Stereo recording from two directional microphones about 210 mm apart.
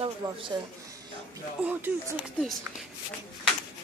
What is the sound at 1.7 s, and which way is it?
Speech, 10° right (ahead or behind).